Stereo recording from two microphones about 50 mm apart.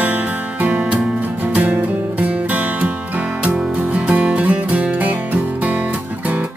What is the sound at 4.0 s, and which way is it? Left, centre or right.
Music, right.